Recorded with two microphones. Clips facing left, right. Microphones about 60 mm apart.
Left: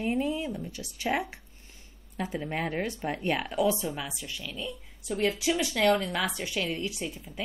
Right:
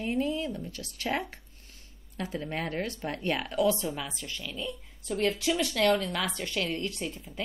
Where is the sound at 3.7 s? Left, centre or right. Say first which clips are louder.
Even; centre.